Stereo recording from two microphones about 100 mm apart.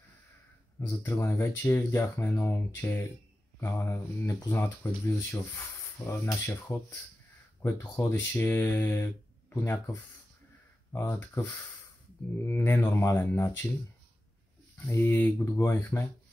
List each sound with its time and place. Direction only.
0.7 s speech: 25° left (ahead or behind)
10.9 s speech: 25° left (ahead or behind)
14.9 s speech: 20° left (ahead or behind)